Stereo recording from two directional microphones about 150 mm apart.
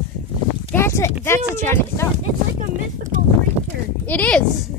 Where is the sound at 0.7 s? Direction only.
15° left (ahead or behind).